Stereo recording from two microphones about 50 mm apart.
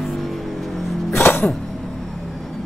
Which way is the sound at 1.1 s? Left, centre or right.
Left.